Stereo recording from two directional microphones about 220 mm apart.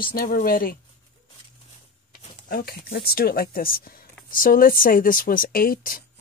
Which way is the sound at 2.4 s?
40° left (ahead or behind).